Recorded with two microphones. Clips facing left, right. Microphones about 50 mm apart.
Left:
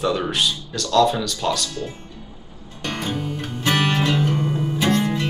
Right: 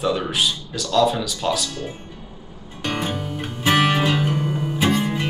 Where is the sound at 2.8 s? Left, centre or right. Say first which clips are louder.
Right 1 dB; centre.